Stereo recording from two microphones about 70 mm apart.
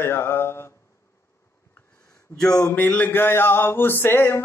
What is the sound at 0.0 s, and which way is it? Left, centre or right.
Mantra, left.